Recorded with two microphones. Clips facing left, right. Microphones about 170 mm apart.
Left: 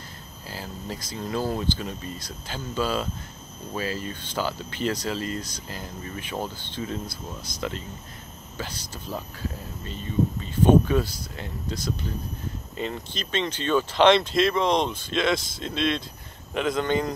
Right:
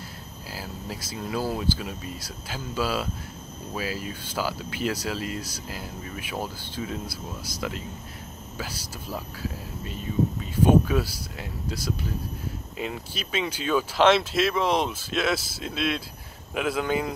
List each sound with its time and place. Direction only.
0.5 s speech: 5° right (ahead or behind)